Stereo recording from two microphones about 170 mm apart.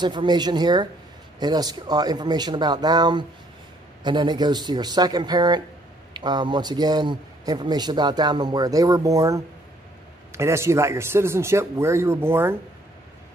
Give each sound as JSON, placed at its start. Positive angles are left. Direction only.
{"t": 0.0, "sound": "a man's voice", "side_deg": -25}